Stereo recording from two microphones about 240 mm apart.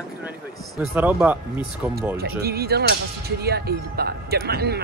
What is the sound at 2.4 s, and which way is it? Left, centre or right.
Speech, right.